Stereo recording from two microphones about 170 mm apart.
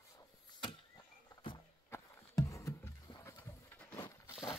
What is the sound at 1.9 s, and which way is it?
Music, 20° left (ahead or behind).